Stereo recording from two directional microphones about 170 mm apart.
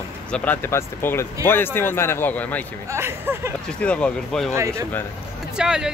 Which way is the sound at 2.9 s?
15° right (ahead or behind).